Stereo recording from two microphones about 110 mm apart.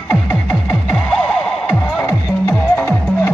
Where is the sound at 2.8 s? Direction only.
20° left (ahead or behind).